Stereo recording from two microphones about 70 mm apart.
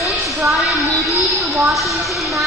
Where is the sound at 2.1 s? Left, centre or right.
Centre.